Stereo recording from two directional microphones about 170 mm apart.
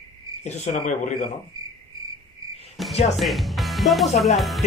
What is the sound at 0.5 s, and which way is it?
Speech, 45° left (ahead or behind).